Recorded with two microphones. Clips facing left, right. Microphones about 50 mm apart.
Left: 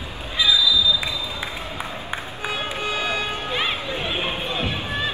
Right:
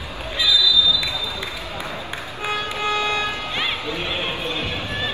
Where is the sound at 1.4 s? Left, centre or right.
Left.